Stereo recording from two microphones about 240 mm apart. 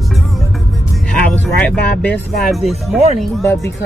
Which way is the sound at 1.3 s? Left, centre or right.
Centre.